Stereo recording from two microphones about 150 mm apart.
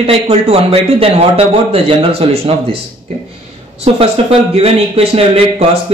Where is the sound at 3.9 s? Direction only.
45° right (ahead or behind).